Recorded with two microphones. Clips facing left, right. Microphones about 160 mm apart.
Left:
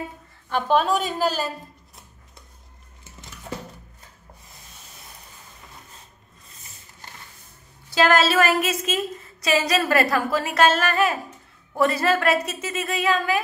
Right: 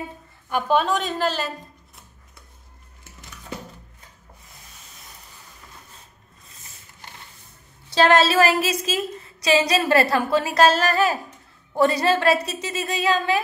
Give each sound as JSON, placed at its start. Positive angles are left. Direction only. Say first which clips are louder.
{"t": 0.5, "sound": "a woman's voice", "louder": "even", "side_deg": -10}
{"t": 0.7, "sound": "a woman's voice", "louder": "left 2 dB", "side_deg": 5}
{"t": 7.9, "sound": "a woman's voice", "louder": "right 2 dB", "side_deg": -30}